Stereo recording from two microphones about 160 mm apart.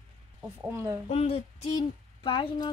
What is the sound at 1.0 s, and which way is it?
Speech, 40° left (ahead or behind).